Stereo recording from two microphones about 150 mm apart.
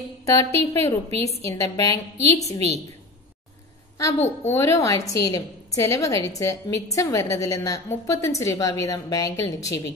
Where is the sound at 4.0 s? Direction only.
20° left (ahead or behind).